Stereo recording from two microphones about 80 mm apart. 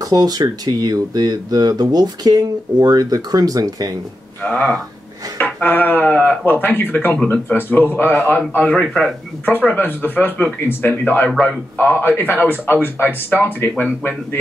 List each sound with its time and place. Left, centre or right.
0.0 s speech: right
4.4 s a man's voice: centre
8.8 s a man's voice: centre
9.8 s a man's voice: left
11.2 s a man's voice: centre
11.8 s a man's voice: left